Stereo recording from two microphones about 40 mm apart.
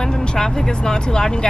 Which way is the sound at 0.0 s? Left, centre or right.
Centre.